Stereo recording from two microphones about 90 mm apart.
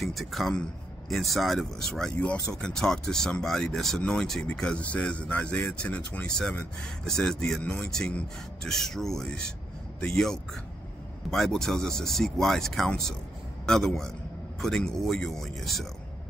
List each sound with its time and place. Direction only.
0.0 s a man's voice: centre (ahead or behind)